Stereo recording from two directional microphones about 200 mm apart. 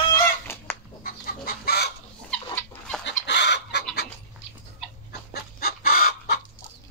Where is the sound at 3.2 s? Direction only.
60° left (ahead or behind).